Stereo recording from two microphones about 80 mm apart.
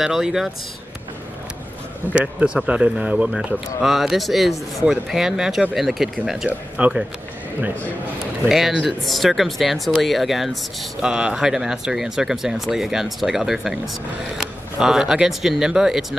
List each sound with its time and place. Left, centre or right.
0.0 s speech: centre
2.1 s speech: centre
3.8 s speech: centre
8.5 s speech: centre